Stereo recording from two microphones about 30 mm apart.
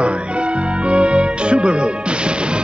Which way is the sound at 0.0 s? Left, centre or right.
Right.